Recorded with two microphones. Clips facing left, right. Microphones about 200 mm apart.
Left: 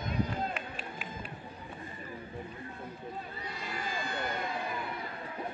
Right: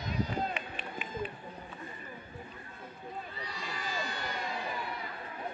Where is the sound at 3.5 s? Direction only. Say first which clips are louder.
Left 1 dB; 55° left (ahead or behind).